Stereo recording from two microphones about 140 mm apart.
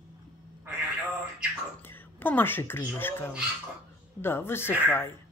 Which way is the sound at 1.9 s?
15° left (ahead or behind).